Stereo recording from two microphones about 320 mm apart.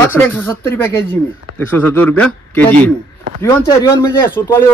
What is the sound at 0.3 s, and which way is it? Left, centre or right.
A man's voice, centre.